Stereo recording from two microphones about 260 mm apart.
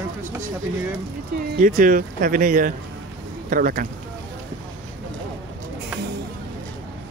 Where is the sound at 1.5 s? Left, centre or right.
Right.